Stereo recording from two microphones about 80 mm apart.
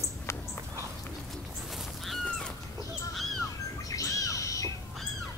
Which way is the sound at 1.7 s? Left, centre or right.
Centre.